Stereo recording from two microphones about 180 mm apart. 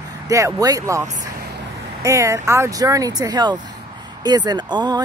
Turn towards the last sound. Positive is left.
turn(degrees=-25)  # may be behind; listen again after turning